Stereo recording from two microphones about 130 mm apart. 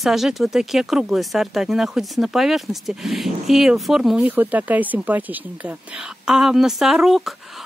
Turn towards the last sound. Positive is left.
turn(degrees=0)  # may be behind; listen again after turning